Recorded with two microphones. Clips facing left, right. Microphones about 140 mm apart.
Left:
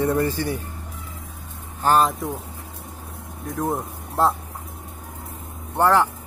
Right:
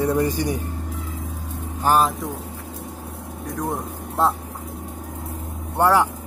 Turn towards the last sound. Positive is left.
turn(degrees=-10)  # may be behind; listen again after turning